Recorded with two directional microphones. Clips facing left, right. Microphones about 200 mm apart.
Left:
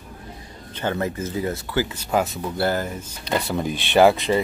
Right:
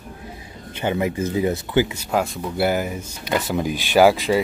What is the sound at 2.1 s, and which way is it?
Speech, centre (ahead or behind).